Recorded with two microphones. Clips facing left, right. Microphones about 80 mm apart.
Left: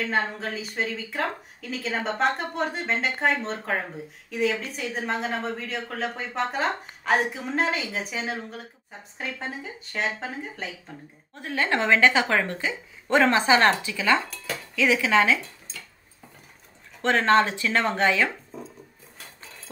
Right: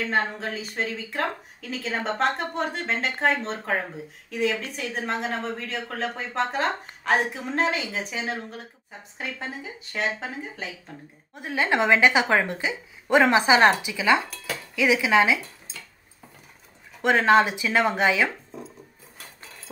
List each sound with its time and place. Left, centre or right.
0.0 s a woman's voice: centre
11.3 s a woman's voice: centre
14.2 s dishes: centre
17.0 s a woman's voice: centre
18.3 s a sound: centre